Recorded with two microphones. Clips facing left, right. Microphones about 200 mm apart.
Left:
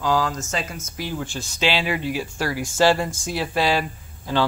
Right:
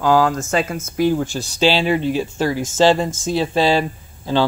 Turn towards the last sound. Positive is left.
turn(degrees=-30)  # may be behind; listen again after turning